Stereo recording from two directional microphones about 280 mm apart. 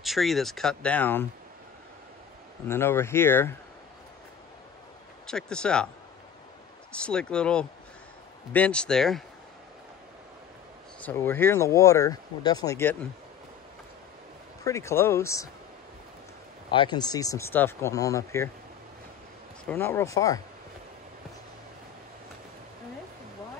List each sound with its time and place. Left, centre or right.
0.0 s speech: centre
2.7 s speech: centre
5.2 s speech: centre
6.9 s speech: centre
11.0 s speech: centre
14.6 s speech: centre
16.7 s speech: centre
19.6 s speech: centre